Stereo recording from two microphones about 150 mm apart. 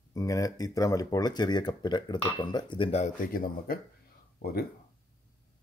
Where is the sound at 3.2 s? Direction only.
70° left (ahead or behind).